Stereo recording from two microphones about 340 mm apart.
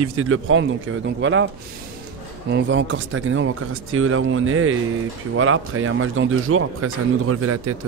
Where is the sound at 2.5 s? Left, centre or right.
Right.